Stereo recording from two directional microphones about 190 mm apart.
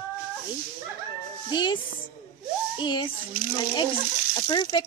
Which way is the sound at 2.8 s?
25° left (ahead or behind).